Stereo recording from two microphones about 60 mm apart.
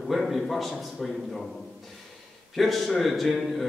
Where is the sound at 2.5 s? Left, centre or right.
Centre.